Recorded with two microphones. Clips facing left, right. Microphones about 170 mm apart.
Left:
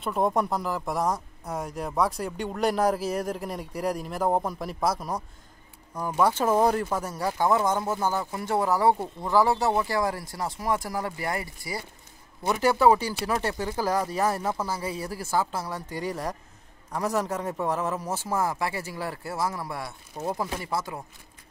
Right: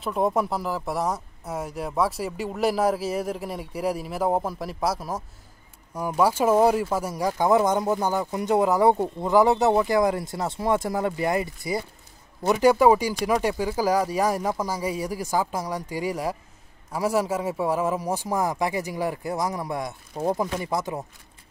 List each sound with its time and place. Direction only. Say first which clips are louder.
0.0 s speech: right 1 dB; centre (ahead or behind); by 21.0 s 20° right (ahead or behind)